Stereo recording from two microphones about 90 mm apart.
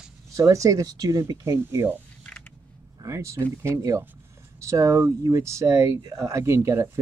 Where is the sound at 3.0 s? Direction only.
35° right (ahead or behind).